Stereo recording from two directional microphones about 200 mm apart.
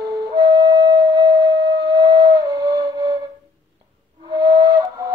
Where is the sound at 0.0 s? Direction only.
20° right (ahead or behind).